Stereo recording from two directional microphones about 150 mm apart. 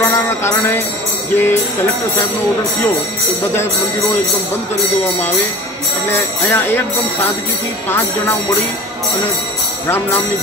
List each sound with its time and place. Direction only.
0.0 s music: 15° left (ahead or behind)
1.3 s speech: 15° left (ahead or behind)
5.0 s speech: 15° left (ahead or behind)
9.8 s speech: 15° left (ahead or behind)